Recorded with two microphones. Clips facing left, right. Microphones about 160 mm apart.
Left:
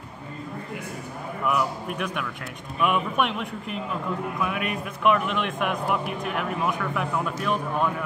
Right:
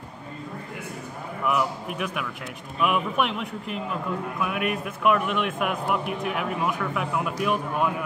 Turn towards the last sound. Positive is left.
turn(degrees=-10)  # may be behind; listen again after turning